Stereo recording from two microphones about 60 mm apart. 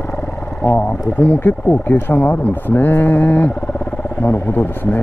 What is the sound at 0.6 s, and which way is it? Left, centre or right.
Speech, left.